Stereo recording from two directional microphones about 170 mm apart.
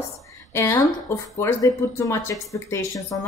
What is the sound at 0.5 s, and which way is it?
A woman's voice, 15° left (ahead or behind).